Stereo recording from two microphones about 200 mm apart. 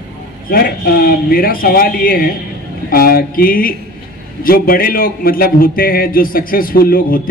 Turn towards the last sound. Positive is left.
turn(degrees=45)  # may be behind; listen again after turning